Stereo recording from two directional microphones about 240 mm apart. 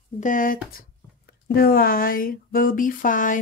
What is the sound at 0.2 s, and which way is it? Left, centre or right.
Speech, left.